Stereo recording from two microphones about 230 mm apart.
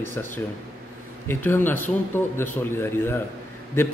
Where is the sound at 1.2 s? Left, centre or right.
Centre.